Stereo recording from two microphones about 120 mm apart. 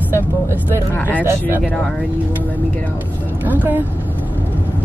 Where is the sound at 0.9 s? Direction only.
15° left (ahead or behind).